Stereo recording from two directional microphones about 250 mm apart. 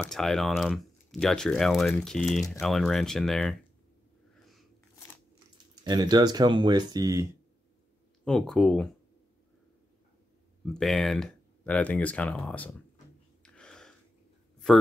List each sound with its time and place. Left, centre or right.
0.0 s speech: centre
5.9 s speech: centre
8.3 s speech: centre
10.6 s speech: centre
13.4 s a sound: centre